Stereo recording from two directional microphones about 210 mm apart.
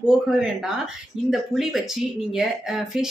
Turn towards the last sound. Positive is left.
turn(degrees=0)  # may be behind; listen again after turning